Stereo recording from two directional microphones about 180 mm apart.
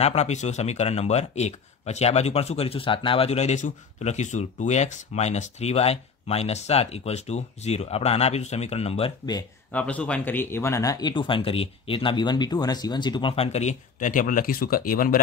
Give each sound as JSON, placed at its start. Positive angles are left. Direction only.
{"t": 0.0, "sound": "a man's voice", "side_deg": 35}
{"t": 9.7, "sound": "speech", "side_deg": 5}